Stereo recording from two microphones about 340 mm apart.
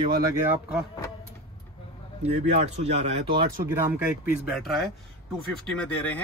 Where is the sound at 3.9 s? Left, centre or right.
Centre.